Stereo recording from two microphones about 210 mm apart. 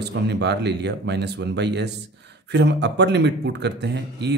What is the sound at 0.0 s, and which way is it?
Speech, 55° right (ahead or behind).